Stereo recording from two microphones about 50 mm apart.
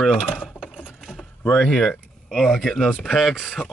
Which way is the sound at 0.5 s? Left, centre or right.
Left.